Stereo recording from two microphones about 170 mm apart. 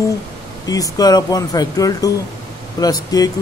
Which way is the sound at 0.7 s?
20° left (ahead or behind).